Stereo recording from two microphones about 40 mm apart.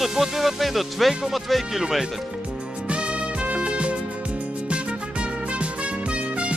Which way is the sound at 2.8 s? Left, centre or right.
Right.